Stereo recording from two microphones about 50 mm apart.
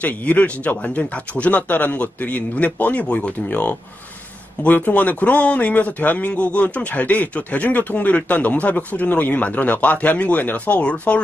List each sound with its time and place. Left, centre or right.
0.0 s a man's voice: left